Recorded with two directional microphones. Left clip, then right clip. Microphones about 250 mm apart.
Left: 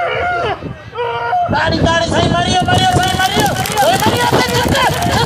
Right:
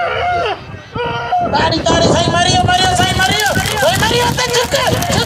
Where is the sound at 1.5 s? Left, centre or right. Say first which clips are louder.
Right 1 dB; right.